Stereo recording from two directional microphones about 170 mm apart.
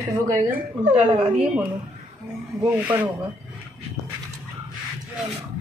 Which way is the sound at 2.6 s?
10° right (ahead or behind).